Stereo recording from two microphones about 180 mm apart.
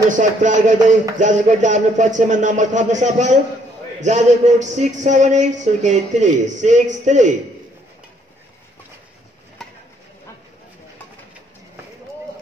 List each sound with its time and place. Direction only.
0.1 s speech: 45° right (ahead or behind)